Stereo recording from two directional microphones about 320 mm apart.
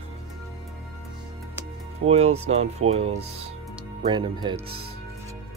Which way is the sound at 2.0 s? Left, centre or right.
Centre.